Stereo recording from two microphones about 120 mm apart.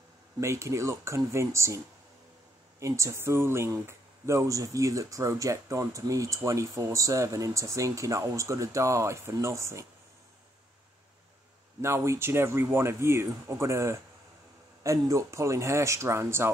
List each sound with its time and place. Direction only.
0.4 s speech: 25° right (ahead or behind)
2.8 s speech: 25° right (ahead or behind)
11.8 s speech: 25° right (ahead or behind)